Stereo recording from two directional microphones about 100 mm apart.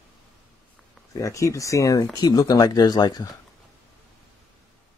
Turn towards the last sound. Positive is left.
turn(degrees=45)  # may be behind; listen again after turning